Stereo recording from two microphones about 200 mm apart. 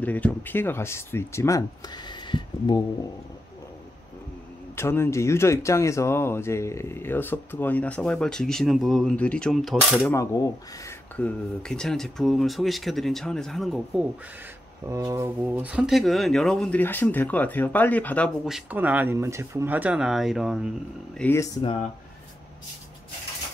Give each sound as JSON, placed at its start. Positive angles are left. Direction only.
{"t": 0.0, "sound": "speech", "side_deg": 10}
{"t": 4.7, "sound": "speech", "side_deg": 10}
{"t": 10.0, "sound": "speech", "side_deg": 15}
{"t": 14.9, "sound": "speech", "side_deg": -15}
{"t": 21.2, "sound": "speech", "side_deg": 15}